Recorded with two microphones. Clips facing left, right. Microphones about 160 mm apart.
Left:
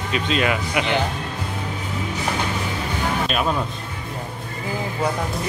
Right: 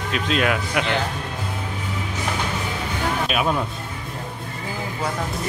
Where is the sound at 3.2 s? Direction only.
5° right (ahead or behind).